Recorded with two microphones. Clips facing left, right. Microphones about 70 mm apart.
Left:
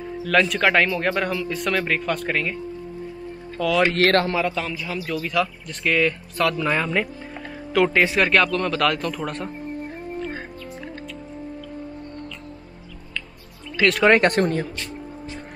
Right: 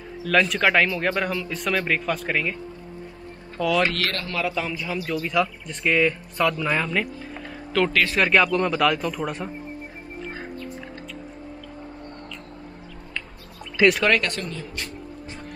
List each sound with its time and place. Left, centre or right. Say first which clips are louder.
0.2 s speech: left 1 dB; centre
3.5 s speech: left 1 dB; centre
3.8 s speech: left 6 dB; left
4.4 s speech: left 2 dB; centre
8.5 s speech: right 1 dB; centre
8.7 s speech: even; centre
14.1 s speech: left 7 dB; left